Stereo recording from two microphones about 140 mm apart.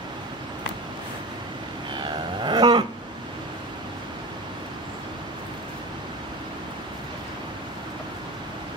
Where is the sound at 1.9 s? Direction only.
35° right (ahead or behind).